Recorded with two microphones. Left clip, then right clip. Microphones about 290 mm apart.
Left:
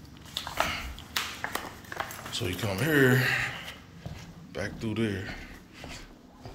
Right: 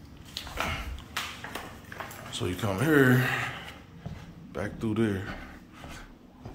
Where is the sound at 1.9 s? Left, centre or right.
Left.